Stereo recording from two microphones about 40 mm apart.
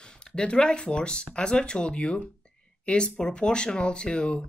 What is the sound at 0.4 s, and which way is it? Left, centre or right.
Speech, left.